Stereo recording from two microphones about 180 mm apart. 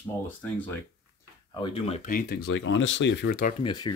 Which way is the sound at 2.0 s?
55° left (ahead or behind).